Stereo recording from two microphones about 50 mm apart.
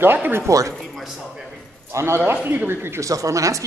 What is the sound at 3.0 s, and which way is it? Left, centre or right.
Speech, right.